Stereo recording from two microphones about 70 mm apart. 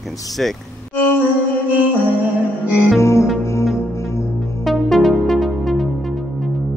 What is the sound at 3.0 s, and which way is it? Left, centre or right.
Music, left.